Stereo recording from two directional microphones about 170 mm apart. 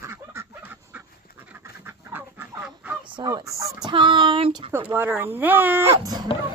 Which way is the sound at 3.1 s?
20° right (ahead or behind).